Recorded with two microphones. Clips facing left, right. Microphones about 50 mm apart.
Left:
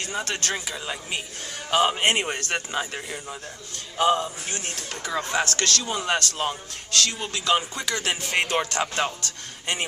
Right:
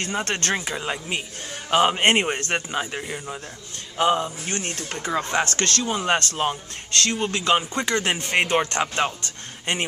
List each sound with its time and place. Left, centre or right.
0.0 s speech: right
0.7 s speech: right
4.5 s speech: right
4.9 s speech: right
8.8 s speech: centre
9.2 s speech: right